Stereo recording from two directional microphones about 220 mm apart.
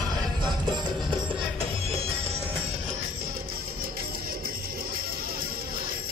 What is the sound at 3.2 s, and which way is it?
Music, 45° right (ahead or behind).